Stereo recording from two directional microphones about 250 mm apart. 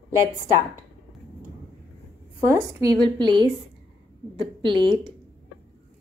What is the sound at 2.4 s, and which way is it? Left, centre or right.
A woman's voice, centre.